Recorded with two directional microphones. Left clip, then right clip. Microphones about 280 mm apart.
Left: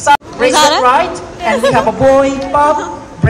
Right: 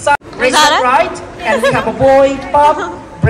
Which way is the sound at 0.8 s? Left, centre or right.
Left.